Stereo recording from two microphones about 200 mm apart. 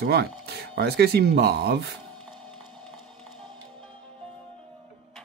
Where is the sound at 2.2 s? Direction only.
Centre (ahead or behind).